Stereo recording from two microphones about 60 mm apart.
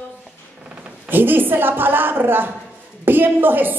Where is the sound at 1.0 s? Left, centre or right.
Right.